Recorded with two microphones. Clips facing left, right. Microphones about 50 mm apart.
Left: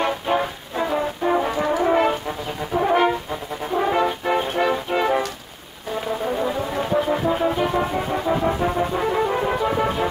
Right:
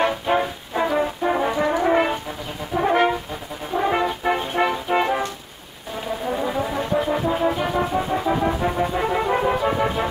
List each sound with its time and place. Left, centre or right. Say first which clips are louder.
0.0 s brass instrument: right 1 dB; centre
4.2 s music: even; centre
6.2 s brass instrument: right 2 dB; centre